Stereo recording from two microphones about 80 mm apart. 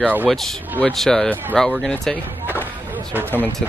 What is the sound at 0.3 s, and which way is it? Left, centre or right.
Speech, centre.